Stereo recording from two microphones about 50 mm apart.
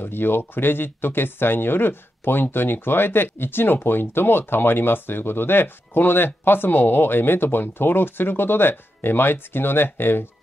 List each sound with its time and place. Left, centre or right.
0.0 s speech: left